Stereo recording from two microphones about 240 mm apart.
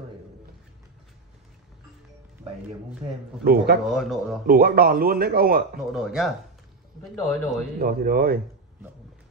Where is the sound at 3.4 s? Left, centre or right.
Right.